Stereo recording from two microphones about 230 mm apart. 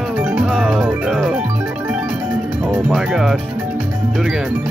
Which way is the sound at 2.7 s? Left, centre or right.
Centre.